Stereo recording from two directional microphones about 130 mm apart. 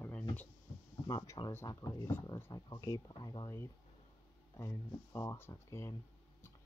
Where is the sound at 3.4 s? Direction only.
20° left (ahead or behind).